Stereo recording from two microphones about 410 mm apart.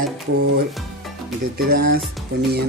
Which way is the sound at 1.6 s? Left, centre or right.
Right.